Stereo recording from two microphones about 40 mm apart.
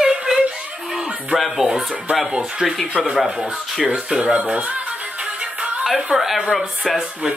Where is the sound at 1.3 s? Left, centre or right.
Centre.